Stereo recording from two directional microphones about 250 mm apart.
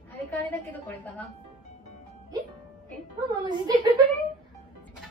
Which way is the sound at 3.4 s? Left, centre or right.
Centre.